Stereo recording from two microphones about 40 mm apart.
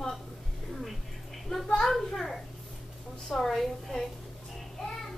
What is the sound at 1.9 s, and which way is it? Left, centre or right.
A child's voice, centre.